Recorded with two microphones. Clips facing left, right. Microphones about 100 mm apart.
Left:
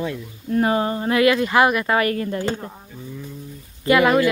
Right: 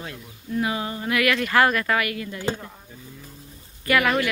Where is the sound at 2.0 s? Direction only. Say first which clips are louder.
Left 7 dB; 40° left (ahead or behind).